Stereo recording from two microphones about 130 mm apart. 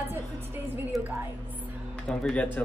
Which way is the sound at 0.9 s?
Centre (ahead or behind).